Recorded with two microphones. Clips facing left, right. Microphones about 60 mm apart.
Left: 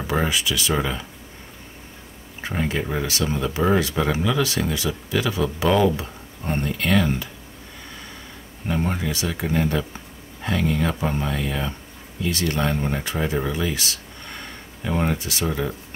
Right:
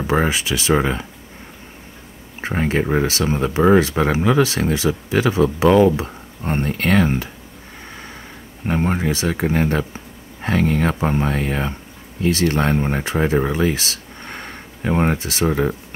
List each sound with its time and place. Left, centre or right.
0.0 s speech: right
2.4 s speech: right
8.6 s speech: right